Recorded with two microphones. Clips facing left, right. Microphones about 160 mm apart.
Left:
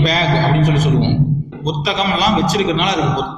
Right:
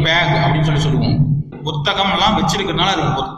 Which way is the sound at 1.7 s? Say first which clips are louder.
Left 1 dB; 10° left (ahead or behind).